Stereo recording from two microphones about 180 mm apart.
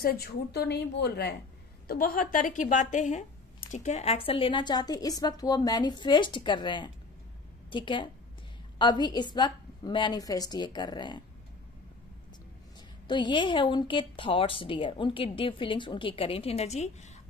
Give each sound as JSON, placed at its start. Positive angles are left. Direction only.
{"t": 0.0, "sound": "a woman's voice", "side_deg": 60}
{"t": 1.9, "sound": "a woman's voice", "side_deg": 55}
{"t": 13.0, "sound": "a woman's voice", "side_deg": 25}